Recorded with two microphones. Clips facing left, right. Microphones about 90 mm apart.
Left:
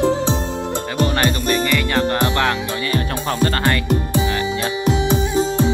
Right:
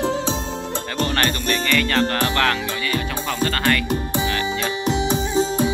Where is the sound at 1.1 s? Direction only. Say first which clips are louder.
Left 1 dB; 20° left (ahead or behind).